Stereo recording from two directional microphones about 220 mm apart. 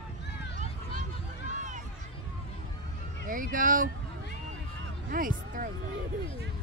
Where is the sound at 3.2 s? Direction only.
40° right (ahead or behind).